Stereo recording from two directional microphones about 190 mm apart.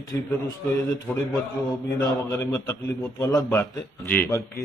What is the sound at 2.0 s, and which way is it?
A man's voice, 20° left (ahead or behind).